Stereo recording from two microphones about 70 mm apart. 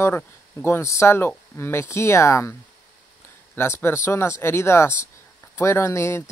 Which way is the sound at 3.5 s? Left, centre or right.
Left.